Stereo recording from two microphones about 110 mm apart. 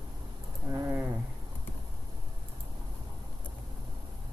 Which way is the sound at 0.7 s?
25° right (ahead or behind).